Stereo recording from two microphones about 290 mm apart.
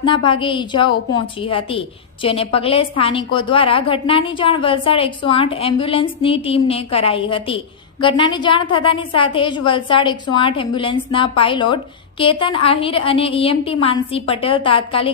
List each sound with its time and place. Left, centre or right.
0.1 s a woman's voice: centre